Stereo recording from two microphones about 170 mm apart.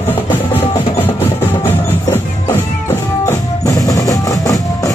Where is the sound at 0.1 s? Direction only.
10° left (ahead or behind).